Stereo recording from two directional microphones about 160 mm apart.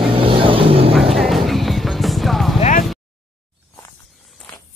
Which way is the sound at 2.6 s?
55° left (ahead or behind).